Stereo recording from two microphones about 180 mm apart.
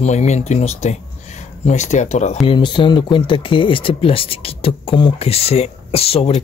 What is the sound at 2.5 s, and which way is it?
Speech, 25° left (ahead or behind).